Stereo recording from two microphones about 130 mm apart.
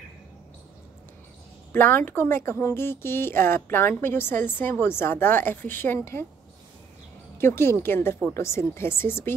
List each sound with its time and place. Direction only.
1.7 s a woman's voice: 15° left (ahead or behind)
7.3 s speech: 20° left (ahead or behind)